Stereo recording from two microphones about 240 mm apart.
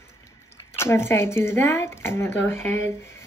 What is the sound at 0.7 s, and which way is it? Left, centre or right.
Speech, centre.